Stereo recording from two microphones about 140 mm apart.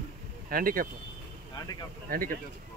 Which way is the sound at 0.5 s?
90° right.